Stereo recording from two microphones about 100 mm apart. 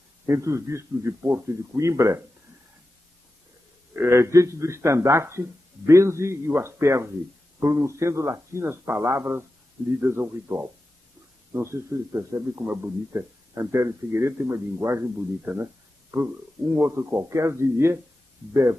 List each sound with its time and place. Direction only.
0.3 s a man's voice: 30° right (ahead or behind)
3.9 s a man's voice: 25° right (ahead or behind)